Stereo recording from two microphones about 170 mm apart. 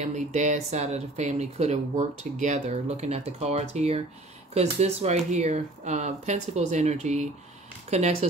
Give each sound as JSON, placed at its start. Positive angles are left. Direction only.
{"t": 0.0, "sound": "speech", "side_deg": -45}